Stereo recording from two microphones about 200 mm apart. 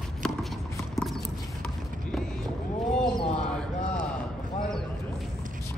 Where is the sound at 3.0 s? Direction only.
5° left (ahead or behind).